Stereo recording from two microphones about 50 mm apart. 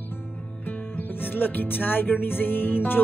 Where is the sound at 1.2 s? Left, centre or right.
Left.